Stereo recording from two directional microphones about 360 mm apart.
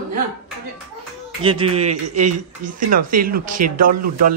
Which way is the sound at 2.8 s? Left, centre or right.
Right.